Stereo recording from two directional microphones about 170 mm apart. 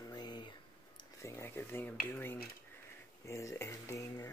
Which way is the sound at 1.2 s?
15° left (ahead or behind).